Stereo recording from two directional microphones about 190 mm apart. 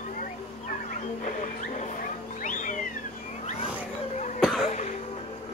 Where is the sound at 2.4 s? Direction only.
40° left (ahead or behind).